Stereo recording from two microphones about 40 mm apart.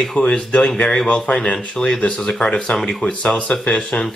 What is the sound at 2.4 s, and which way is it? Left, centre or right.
Speech, centre.